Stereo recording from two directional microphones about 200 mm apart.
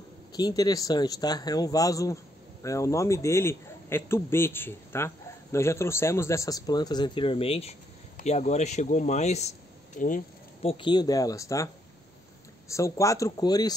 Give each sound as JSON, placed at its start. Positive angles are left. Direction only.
{"t": 0.3, "sound": "a man's voice", "side_deg": 20}
{"t": 10.6, "sound": "a man's voice", "side_deg": 25}